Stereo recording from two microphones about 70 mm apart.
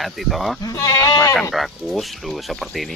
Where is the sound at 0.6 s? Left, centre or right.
Left.